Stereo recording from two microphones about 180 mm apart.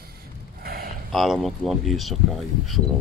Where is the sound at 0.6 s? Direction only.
55° right (ahead or behind).